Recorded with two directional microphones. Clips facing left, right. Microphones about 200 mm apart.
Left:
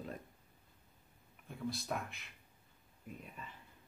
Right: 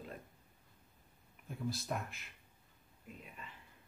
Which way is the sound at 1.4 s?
Centre (ahead or behind).